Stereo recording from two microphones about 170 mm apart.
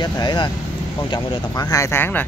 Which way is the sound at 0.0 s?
25° left (ahead or behind).